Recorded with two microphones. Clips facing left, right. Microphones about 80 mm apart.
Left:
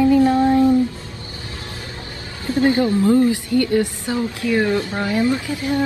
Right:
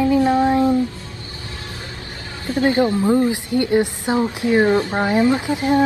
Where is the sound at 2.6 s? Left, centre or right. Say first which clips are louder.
Even; right.